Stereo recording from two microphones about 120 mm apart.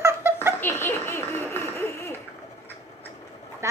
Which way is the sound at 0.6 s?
20° left (ahead or behind).